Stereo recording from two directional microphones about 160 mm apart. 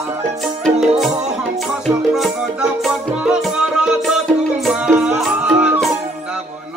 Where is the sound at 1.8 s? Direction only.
Centre (ahead or behind).